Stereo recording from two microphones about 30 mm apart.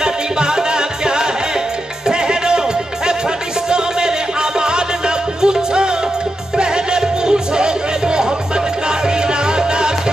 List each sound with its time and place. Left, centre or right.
0.0 s music: right
3.6 s music: right